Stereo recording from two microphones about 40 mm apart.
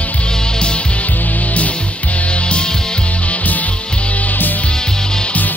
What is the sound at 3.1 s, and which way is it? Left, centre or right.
Music, left.